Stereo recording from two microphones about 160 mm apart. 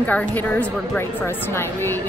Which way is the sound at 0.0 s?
10° left (ahead or behind).